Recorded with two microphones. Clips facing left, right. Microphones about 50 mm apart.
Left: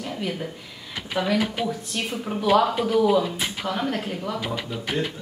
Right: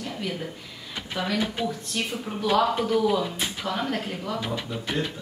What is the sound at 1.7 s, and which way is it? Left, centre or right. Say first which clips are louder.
Speech: left 1 dB; centre.